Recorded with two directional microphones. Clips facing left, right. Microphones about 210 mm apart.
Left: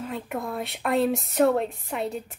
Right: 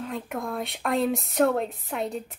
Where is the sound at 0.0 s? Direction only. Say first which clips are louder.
Left 1 dB; centre (ahead or behind).